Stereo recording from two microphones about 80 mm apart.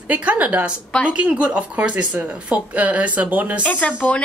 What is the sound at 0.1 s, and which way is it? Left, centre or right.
Speech, centre.